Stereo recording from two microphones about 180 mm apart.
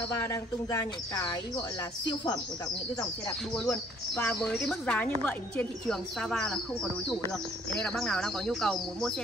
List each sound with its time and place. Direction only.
0.3 s speech: 20° left (ahead or behind)
3.5 s speech: 5° left (ahead or behind)